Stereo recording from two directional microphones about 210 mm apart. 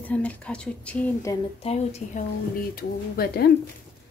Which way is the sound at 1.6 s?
30° left (ahead or behind).